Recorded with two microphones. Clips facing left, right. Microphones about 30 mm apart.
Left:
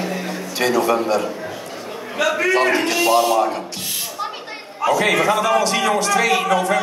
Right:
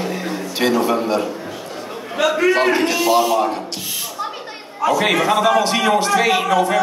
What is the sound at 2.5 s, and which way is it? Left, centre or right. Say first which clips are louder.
Speech: even; centre.